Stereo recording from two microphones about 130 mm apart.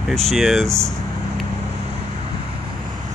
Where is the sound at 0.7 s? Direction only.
25° right (ahead or behind).